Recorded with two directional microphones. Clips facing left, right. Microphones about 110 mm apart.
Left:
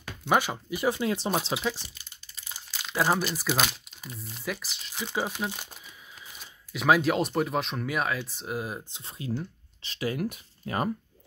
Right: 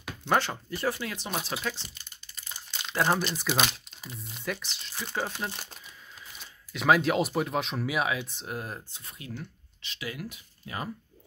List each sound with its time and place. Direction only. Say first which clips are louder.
0.2 s speech: left 1 dB; 10° left (ahead or behind)
1.1 s speech: left 6 dB; 35° left (ahead or behind)
1.5 s speech: left 4 dB; 5° left (ahead or behind)
8.9 s speech: left 7 dB; 30° left (ahead or behind); by 10.9 s 50° left (ahead or behind)